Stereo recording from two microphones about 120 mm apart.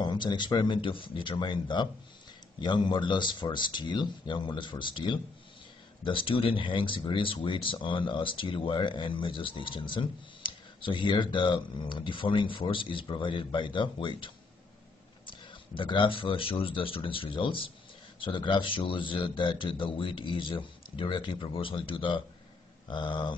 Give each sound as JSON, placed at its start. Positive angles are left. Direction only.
{"t": 0.0, "sound": "speech", "side_deg": 40}